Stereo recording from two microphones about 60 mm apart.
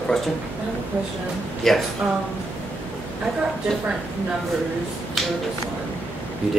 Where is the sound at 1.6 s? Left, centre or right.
Centre.